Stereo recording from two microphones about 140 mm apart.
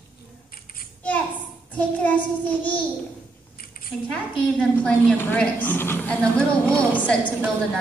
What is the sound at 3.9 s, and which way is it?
A woman's voice, 10° left (ahead or behind).